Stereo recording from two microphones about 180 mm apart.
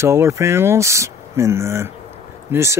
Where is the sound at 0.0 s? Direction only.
15° right (ahead or behind).